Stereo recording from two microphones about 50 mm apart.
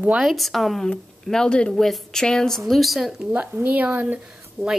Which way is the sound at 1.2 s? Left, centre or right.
Centre.